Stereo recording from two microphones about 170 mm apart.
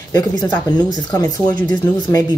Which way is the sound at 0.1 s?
25° left (ahead or behind).